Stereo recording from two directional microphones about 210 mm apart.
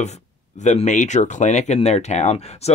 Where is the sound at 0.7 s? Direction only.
35° left (ahead or behind).